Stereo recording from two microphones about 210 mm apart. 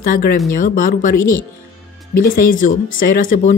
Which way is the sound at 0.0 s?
40° left (ahead or behind).